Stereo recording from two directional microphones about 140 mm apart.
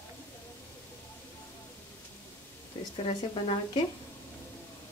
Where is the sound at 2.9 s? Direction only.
40° left (ahead or behind).